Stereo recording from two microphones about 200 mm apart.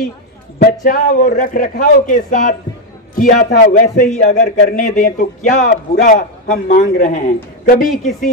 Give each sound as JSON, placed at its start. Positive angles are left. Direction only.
{"t": 0.6, "sound": "a man's voice", "side_deg": 45}
{"t": 7.9, "sound": "speech", "side_deg": 0}